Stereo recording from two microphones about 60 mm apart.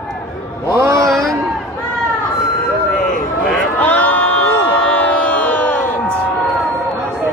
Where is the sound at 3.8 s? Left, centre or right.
Left.